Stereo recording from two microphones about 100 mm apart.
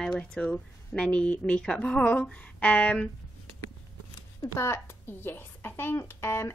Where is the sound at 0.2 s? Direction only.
15° left (ahead or behind).